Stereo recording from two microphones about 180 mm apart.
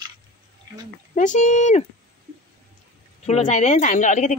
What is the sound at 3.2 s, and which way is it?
Speech, 40° left (ahead or behind).